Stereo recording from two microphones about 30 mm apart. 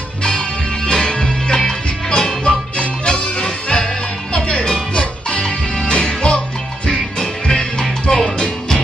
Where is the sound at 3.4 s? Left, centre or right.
Left.